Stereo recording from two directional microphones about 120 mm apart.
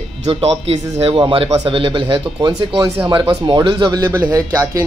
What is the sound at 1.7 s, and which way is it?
Speech, 45° right (ahead or behind).